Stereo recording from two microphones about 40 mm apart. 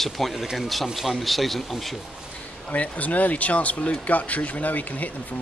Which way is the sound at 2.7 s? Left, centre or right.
Left.